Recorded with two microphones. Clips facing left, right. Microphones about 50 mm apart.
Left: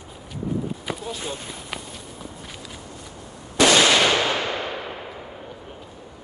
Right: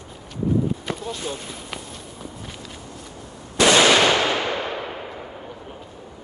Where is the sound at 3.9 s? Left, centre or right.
Centre.